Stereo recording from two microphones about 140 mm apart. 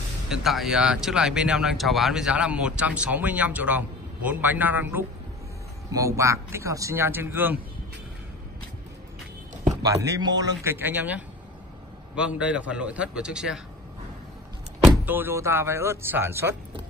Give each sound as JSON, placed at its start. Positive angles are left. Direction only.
{"t": 0.3, "sound": "a man's voice", "side_deg": 0}
{"t": 9.7, "sound": "a man's voice", "side_deg": -25}
{"t": 15.0, "sound": "speech", "side_deg": -15}